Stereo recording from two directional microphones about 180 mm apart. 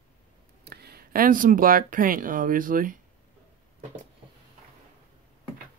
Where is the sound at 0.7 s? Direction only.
60° right (ahead or behind).